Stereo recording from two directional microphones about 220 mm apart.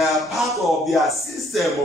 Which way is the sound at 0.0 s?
Centre (ahead or behind).